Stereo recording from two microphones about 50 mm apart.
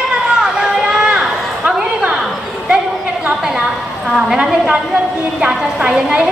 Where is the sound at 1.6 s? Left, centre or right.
Right.